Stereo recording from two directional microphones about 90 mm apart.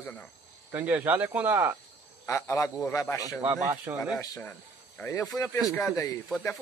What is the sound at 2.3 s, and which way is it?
Speech, 35° left (ahead or behind).